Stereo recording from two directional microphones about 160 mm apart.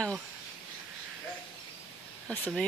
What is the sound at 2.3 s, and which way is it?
Speech, 5° left (ahead or behind).